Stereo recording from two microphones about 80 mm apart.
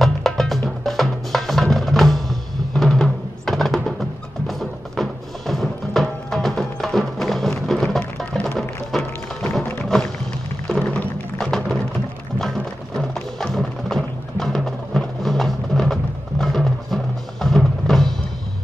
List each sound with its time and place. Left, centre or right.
0.0 s music: centre
9.6 s music: centre